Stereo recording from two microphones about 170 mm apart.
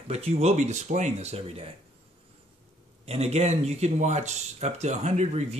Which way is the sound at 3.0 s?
40° right (ahead or behind).